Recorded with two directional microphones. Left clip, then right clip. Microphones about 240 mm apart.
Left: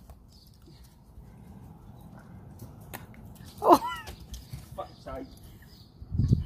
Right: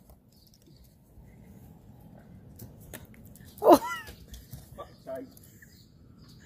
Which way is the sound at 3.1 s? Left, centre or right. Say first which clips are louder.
Left 3 dB; centre.